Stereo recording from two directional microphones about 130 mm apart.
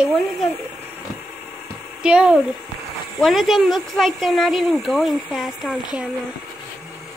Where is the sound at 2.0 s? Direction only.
5° right (ahead or behind).